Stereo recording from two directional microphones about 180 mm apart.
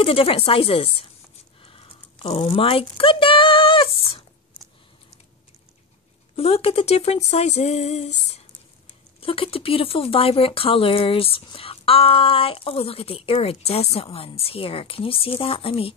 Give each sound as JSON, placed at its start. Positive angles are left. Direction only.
{"t": 0.0, "sound": "speech", "side_deg": 30}
{"t": 1.6, "sound": "a sound", "side_deg": 30}
{"t": 6.3, "sound": "speech", "side_deg": 35}
{"t": 9.2, "sound": "speech", "side_deg": 30}